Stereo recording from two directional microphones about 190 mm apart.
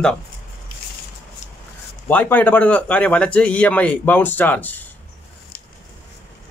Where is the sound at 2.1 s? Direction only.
10° left (ahead or behind).